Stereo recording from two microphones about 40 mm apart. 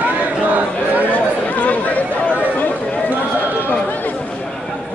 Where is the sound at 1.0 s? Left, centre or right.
Left.